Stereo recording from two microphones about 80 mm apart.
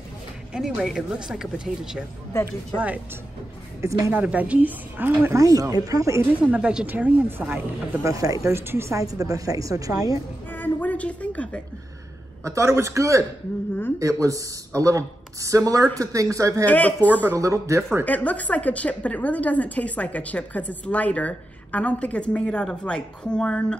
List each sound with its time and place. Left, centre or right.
0.5 s speech: centre
3.8 s speech: right
4.1 s a woman's voice: centre
5.3 s speech: right
6.4 s a woman's voice: centre; by 8.1 s right
8.1 s a woman's voice: right
9.0 s speech: right
10.5 s a sound: left
12.4 s a woman's voice: right
16.6 s speech: centre
17.4 s a woman's voice: right
18.0 s a woman's voice: centre